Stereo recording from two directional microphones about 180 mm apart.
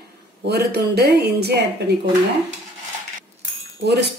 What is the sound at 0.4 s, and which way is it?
Speech, 60° right (ahead or behind).